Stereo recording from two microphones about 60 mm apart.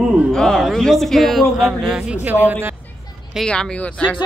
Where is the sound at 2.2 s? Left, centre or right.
Right.